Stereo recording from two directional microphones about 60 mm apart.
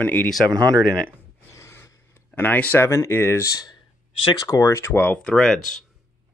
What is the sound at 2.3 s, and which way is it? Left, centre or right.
Speech, left.